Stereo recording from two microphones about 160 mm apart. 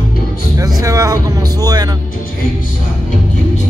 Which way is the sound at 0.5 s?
20° right (ahead or behind).